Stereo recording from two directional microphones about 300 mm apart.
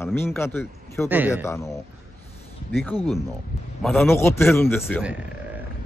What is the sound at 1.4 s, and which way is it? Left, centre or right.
Speech, centre.